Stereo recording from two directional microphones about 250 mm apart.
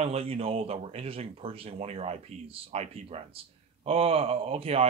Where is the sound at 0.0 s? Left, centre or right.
Right.